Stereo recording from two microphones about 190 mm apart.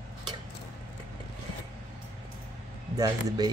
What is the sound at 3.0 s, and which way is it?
Speech, 20° right (ahead or behind).